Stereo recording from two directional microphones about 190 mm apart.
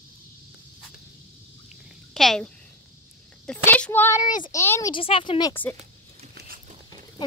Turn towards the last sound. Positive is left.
turn(degrees=-50)  # may be behind; listen again after turning